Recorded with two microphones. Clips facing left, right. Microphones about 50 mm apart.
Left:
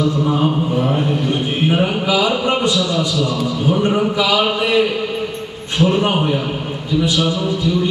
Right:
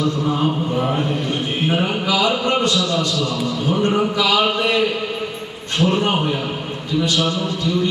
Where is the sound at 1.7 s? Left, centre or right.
Centre.